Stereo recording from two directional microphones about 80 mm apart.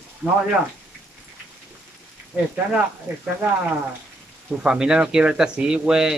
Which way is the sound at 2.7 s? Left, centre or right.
Centre.